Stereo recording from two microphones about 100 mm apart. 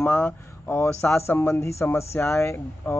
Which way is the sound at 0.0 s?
20° left (ahead or behind).